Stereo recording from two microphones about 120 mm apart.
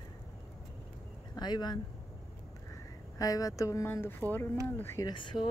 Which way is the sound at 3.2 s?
30° left (ahead or behind).